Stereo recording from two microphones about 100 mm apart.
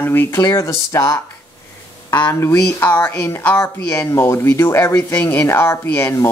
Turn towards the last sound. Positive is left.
turn(degrees=25)  # may be behind; listen again after turning